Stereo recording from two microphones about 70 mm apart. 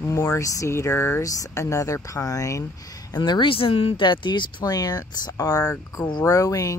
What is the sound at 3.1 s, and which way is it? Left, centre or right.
Speech, left.